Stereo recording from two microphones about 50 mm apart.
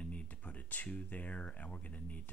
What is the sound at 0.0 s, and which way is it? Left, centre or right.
Speech, left.